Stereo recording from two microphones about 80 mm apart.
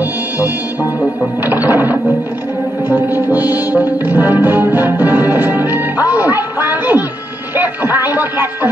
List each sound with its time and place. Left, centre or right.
1.4 s music: right
6.3 s speech: right
7.5 s music: right